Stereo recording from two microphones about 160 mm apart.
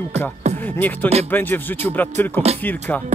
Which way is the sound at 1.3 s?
10° left (ahead or behind).